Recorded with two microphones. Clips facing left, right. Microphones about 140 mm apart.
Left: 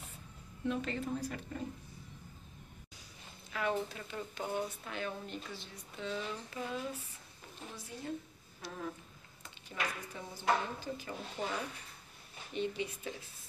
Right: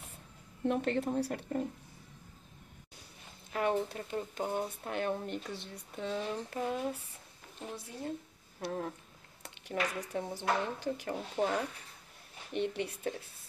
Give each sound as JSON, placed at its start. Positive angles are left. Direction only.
{"t": 0.7, "sound": "a woman's voice", "side_deg": -60}
{"t": 3.5, "sound": "speech", "side_deg": -50}
{"t": 8.5, "sound": "a woman's voice", "side_deg": -60}
{"t": 9.4, "sound": "a woman's voice", "side_deg": -75}